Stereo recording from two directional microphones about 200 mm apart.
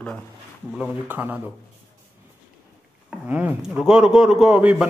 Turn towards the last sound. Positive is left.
turn(degrees=-5)  # may be behind; listen again after turning